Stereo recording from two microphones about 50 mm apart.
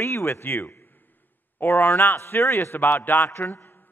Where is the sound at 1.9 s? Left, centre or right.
Left.